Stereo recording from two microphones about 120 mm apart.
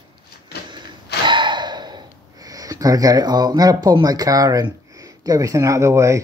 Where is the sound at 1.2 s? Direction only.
40° right (ahead or behind).